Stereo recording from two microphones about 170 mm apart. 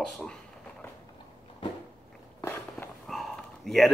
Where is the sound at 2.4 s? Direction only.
15° left (ahead or behind).